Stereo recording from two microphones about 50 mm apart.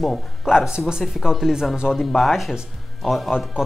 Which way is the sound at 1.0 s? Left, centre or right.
Centre.